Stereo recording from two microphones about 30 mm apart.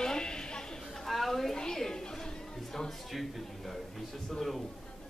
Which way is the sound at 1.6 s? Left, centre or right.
Left.